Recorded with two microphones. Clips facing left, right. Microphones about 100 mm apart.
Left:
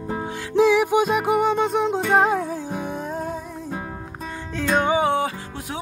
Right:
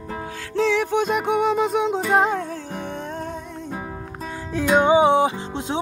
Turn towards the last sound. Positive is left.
turn(degrees=-20)  # may be behind; listen again after turning